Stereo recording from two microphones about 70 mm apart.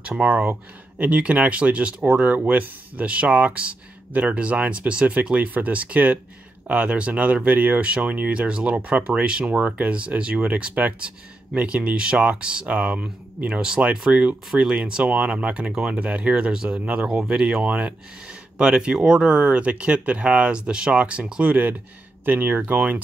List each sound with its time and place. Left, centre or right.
0.0 s speech: centre